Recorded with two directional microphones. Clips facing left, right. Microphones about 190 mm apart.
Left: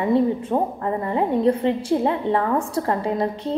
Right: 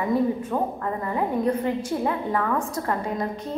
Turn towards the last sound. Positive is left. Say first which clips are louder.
# left 5 dB
turn(degrees=30)  # may be behind; listen again after turning